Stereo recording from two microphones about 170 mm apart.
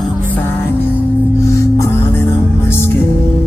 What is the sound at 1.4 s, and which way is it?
Music, 15° left (ahead or behind).